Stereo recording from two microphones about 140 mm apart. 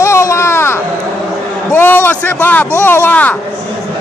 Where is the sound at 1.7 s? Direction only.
15° left (ahead or behind).